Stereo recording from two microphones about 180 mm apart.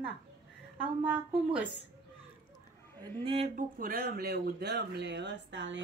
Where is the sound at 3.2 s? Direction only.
35° right (ahead or behind).